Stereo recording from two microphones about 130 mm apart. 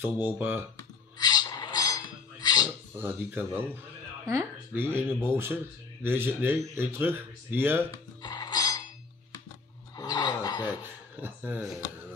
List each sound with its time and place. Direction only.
0.4 s speech: 15° right (ahead or behind)
0.7 s a sound: 30° left (ahead or behind)
3.0 s speech: 15° right (ahead or behind)
7.9 s music: 35° left (ahead or behind)
9.9 s filing: 30° left (ahead or behind)
11.1 s speech: 15° right (ahead or behind)